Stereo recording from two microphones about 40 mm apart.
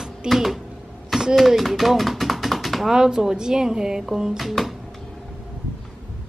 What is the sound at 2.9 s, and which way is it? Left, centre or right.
Speech, centre.